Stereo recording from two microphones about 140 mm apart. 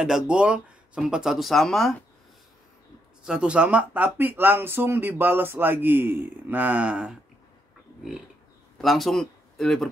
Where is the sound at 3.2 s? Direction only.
5° right (ahead or behind).